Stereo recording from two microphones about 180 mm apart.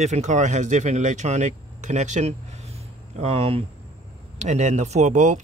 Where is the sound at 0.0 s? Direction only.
40° right (ahead or behind).